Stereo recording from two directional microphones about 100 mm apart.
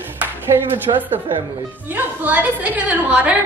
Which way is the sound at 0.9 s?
60° right (ahead or behind).